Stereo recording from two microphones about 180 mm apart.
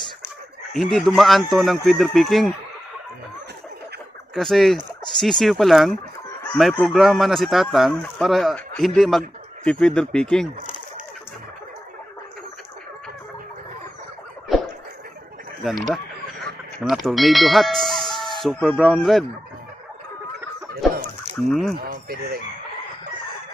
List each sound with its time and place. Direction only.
0.7 s speech: centre (ahead or behind)
4.4 s speech: centre (ahead or behind)
14.5 s a sound: centre (ahead or behind)
15.6 s speech: centre (ahead or behind)
21.5 s speech: centre (ahead or behind)
21.7 s speech: 55° right (ahead or behind)